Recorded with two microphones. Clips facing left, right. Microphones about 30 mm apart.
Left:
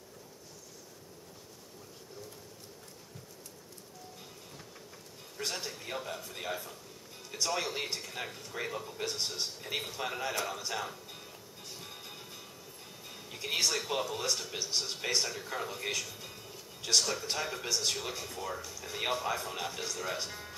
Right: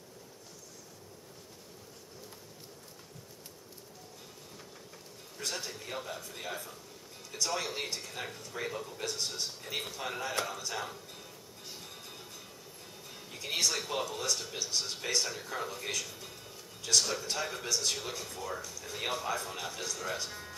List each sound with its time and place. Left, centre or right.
5.5 s a man's voice: centre
10.8 s music: centre
13.7 s speech: centre
15.2 s a man's voice: centre
16.1 s music: centre
17.0 s a man's voice: centre